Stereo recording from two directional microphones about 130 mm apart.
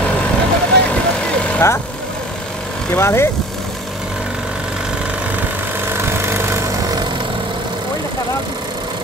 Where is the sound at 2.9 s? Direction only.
20° left (ahead or behind).